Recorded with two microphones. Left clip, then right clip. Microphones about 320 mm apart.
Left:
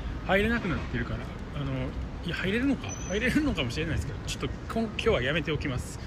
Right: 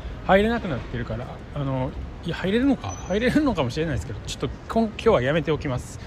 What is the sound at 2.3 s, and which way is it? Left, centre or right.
Speech, centre.